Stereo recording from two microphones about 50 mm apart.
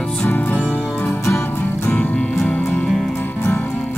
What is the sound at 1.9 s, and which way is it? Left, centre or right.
Music, left.